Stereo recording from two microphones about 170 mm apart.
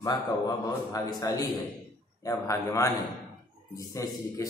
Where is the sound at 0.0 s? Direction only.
20° left (ahead or behind).